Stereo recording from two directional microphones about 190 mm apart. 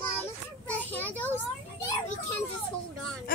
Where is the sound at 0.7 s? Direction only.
10° left (ahead or behind).